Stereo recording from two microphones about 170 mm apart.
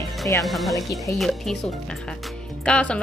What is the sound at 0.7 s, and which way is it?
Speech, 20° left (ahead or behind).